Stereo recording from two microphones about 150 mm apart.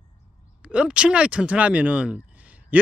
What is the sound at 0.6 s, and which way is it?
Speech, 10° right (ahead or behind).